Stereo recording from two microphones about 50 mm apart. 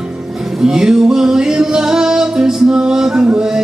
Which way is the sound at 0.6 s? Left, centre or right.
Centre.